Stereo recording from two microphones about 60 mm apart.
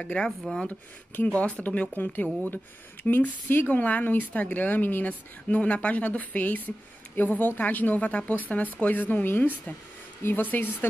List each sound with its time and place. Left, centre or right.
0.0 s speech: centre